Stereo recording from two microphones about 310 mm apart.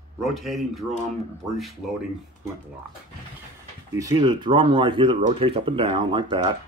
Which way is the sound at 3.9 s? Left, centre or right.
Centre.